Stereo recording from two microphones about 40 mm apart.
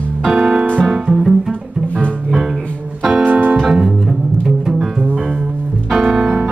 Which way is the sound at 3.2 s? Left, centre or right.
Right.